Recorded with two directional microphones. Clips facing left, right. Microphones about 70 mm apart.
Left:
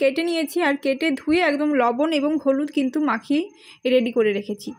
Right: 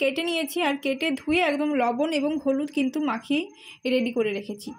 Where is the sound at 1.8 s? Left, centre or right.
Left.